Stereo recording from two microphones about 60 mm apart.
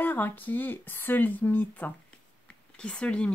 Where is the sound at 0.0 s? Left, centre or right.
Left.